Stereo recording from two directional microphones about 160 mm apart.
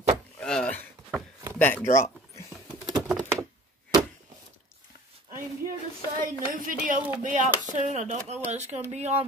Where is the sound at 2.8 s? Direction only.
5° right (ahead or behind).